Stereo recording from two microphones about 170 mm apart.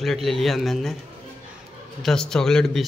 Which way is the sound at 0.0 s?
Centre (ahead or behind).